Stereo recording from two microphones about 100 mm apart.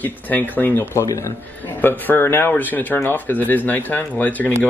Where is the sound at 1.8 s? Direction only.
20° left (ahead or behind).